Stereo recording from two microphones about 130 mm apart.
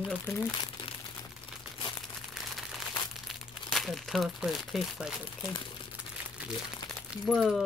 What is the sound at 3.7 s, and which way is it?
Speech, centre (ahead or behind).